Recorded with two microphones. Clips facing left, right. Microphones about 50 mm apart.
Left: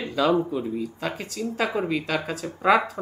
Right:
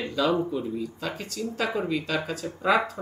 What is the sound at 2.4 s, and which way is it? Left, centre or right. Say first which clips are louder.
Speech: left 1 dB; left.